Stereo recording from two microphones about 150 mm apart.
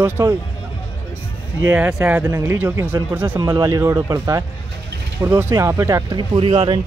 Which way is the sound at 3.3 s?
25° right (ahead or behind).